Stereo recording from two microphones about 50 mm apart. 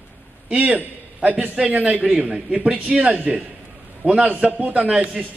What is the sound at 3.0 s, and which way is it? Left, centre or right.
A man's voice, right.